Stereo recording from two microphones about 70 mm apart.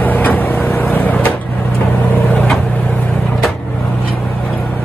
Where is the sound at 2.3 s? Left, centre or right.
Centre.